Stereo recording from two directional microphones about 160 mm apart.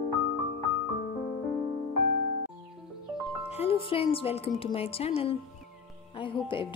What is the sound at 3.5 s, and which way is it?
Speech, 40° left (ahead or behind).